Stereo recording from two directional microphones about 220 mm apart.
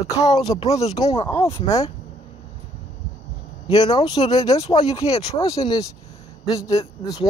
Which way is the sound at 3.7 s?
20° left (ahead or behind).